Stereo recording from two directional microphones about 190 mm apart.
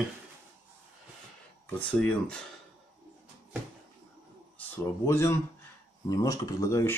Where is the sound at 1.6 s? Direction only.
5° left (ahead or behind).